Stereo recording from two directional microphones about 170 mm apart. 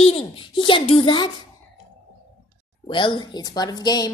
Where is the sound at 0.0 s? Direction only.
35° left (ahead or behind).